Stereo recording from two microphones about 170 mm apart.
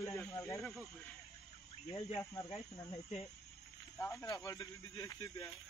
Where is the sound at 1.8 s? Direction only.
25° left (ahead or behind).